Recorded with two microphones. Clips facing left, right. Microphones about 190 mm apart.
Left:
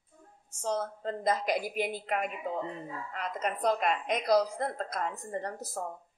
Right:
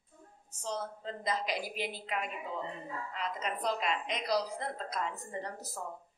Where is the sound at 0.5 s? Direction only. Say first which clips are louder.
Left 6 dB; 50° left (ahead or behind).